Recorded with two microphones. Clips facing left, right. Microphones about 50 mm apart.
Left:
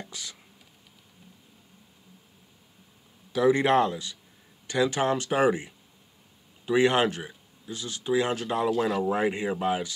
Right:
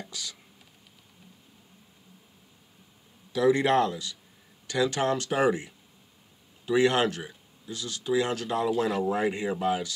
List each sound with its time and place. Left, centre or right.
0.1 s speech: left
3.3 s speech: centre
8.6 s speech: centre
9.1 s speech: left